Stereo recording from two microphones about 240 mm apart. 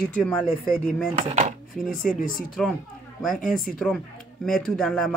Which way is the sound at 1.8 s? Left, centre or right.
Left.